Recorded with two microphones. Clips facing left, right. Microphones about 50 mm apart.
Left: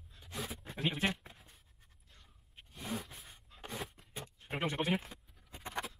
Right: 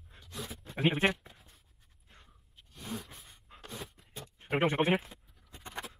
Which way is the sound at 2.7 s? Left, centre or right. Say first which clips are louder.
Even; centre.